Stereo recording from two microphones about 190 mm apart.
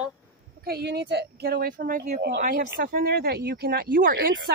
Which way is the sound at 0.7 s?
60° right (ahead or behind).